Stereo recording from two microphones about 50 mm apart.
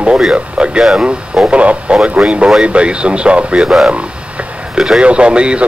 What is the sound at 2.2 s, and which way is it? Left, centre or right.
Speech, centre.